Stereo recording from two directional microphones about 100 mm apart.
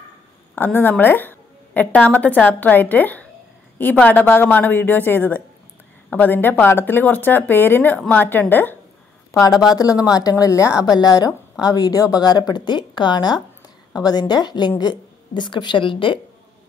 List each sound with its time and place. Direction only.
0.6 s a woman's voice: 20° left (ahead or behind)
9.3 s a woman's voice: 35° left (ahead or behind); by 16.2 s 60° left (ahead or behind)